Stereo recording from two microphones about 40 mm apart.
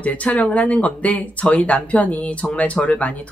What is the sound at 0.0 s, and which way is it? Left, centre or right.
Speech, left.